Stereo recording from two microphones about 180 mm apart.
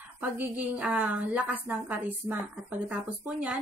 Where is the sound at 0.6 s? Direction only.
10° right (ahead or behind).